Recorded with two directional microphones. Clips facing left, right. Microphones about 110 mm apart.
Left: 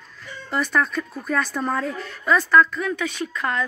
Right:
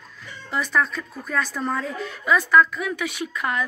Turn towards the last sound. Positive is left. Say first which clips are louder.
# left 1 dB
turn(degrees=-10)  # may be behind; listen again after turning